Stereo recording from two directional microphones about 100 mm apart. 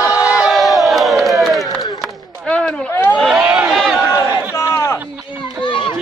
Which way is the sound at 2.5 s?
10° left (ahead or behind).